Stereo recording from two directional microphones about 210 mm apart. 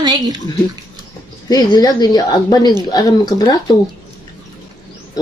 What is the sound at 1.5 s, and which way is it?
Speech, 20° left (ahead or behind).